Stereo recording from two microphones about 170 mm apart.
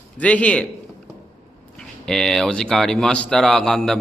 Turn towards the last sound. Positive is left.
turn(degrees=5)  # may be behind; listen again after turning